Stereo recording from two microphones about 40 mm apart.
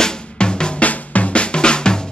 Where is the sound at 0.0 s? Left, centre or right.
Centre.